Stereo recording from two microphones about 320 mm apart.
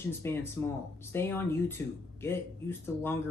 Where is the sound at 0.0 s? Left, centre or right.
Centre.